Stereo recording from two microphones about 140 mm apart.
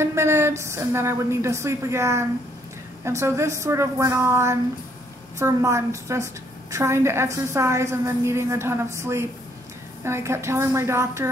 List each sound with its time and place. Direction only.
0.0 s a woman's voice: 20° right (ahead or behind)